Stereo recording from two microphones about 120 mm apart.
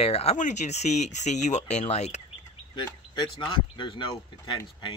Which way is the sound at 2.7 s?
35° left (ahead or behind).